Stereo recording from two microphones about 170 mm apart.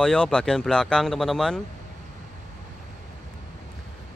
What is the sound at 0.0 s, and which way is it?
Speech, 5° left (ahead or behind).